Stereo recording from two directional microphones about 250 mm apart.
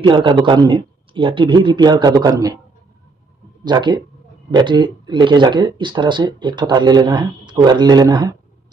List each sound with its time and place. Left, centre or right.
0.0 s a man's voice: centre
3.6 s speech: centre